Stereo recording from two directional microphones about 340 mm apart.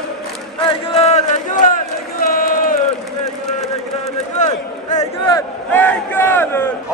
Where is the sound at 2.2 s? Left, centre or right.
Left.